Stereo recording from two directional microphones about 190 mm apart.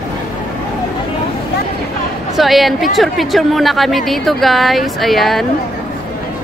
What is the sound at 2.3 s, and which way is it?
A woman's voice, centre (ahead or behind).